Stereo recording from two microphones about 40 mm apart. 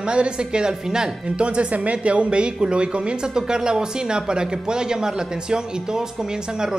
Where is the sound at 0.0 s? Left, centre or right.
Right.